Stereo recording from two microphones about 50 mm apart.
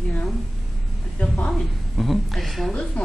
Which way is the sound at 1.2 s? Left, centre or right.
Left.